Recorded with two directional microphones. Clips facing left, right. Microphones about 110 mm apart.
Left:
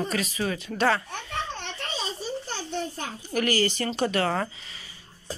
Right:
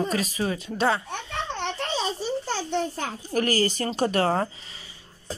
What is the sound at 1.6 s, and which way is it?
Babbling, 90° right.